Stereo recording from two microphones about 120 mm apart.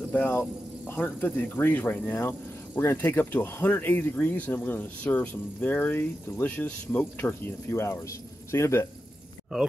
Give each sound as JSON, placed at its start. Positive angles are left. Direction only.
{"t": 0.1, "sound": "speech", "side_deg": 15}